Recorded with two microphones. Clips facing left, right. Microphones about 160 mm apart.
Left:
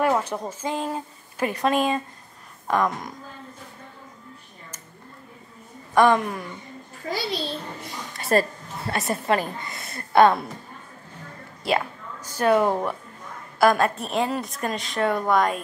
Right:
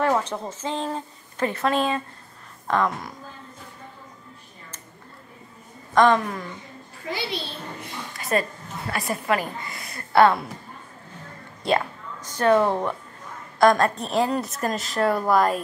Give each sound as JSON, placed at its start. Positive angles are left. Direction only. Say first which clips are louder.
{"t": 0.0, "sound": "a woman's voice", "louder": "even", "side_deg": 10}
{"t": 5.9, "sound": "a woman's voice", "louder": "even", "side_deg": 10}
{"t": 7.1, "sound": "a child's voice", "louder": "left 2 dB", "side_deg": 40}
{"t": 11.6, "sound": "a sound", "louder": "right 1 dB", "side_deg": 5}
{"t": 13.6, "sound": "a woman's voice", "louder": "right 1 dB", "side_deg": 5}